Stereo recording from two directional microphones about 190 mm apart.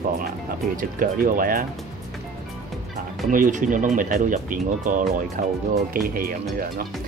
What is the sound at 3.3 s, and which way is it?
Speech, 45° right (ahead or behind).